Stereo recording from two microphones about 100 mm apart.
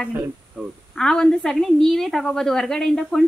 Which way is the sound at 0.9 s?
5° left (ahead or behind).